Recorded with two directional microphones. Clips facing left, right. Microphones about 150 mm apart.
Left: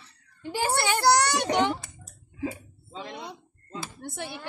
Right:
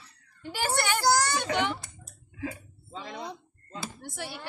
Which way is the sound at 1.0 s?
70° left (ahead or behind).